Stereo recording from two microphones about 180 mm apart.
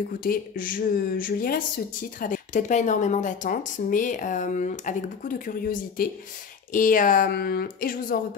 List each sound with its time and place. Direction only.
0.2 s speech: 50° left (ahead or behind)